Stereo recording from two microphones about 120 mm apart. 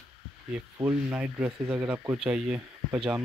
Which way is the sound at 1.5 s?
30° right (ahead or behind).